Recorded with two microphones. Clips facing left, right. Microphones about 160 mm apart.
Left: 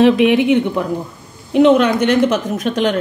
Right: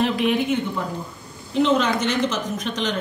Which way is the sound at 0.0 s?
75° left (ahead or behind).